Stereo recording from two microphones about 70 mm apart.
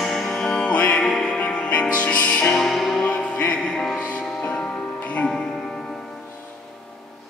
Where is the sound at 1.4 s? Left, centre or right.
Centre.